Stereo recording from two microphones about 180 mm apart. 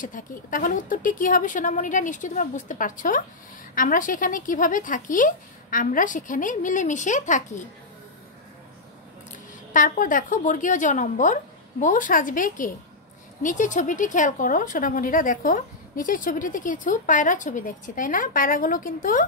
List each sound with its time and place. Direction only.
0.0 s a woman's voice: 50° left (ahead or behind)
9.7 s a woman's voice: 45° left (ahead or behind)